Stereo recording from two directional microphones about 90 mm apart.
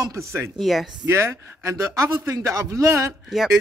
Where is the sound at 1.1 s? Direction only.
30° right (ahead or behind).